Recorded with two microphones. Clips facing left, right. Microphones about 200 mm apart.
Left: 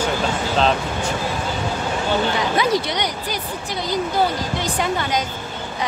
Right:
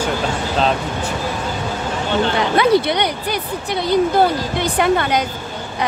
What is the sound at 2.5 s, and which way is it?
Speech, 60° right (ahead or behind).